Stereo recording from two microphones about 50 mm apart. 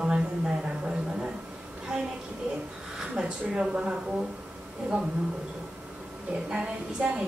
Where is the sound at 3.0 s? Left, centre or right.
Centre.